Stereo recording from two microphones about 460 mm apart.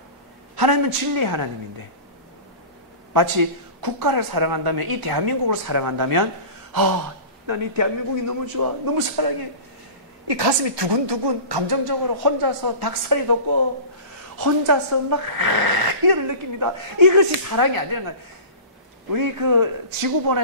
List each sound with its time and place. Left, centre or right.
0.6 s a woman's voice: right
3.1 s a woman's voice: right
6.7 s gasp: right
7.4 s a man's voice: right
10.2 s a woman's voice: right
14.4 s a woman's voice: right
19.1 s a woman's voice: right